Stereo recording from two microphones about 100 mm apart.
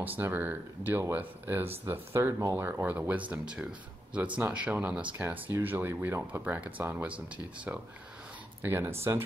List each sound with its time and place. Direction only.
0.0 s speech: 20° right (ahead or behind)